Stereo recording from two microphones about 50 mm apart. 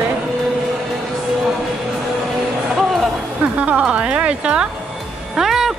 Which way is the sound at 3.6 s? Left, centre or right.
Right.